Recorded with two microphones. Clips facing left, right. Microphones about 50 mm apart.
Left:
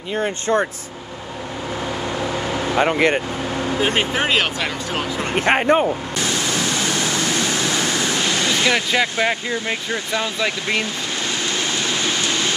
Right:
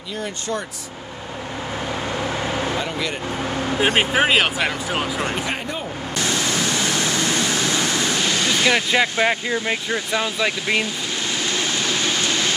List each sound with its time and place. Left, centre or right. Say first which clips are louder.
0.1 s speech: left 7 dB; left
2.1 s vehicle: left 1 dB; centre
2.8 s speech: left 9 dB; left
3.7 s speech: right 2 dB; centre
5.3 s speech: left 10 dB; left
6.2 s a sound: even; right
6.6 s a sound: even; left
8.6 s speech: right 2 dB; centre
11.9 s a sound: even; centre